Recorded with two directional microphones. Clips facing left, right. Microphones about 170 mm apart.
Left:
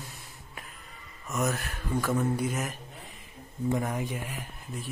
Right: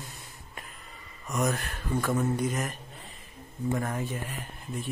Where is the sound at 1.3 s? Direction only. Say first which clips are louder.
Right 1 dB; centre (ahead or behind).